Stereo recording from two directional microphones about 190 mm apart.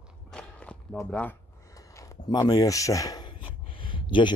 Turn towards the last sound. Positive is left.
turn(degrees=25)  # may be behind; listen again after turning